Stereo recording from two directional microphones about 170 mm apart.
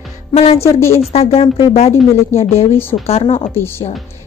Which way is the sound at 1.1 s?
35° left (ahead or behind).